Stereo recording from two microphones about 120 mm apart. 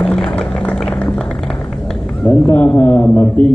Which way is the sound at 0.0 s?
5° left (ahead or behind).